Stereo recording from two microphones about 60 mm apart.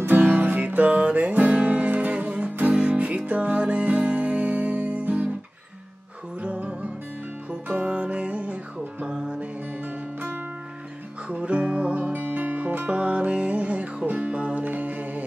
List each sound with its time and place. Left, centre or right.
0.0 s music: right
6.4 s music: centre
11.2 s music: centre